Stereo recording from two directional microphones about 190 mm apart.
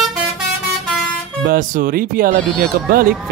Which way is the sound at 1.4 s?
45° right (ahead or behind).